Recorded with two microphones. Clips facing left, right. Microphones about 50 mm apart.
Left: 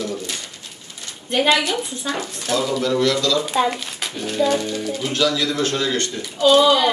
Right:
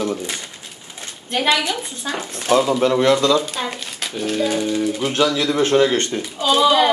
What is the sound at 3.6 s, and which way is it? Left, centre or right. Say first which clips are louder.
Speech: left 3 dB; centre.